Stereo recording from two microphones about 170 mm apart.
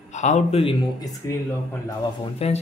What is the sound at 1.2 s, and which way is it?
Speech, 15° left (ahead or behind).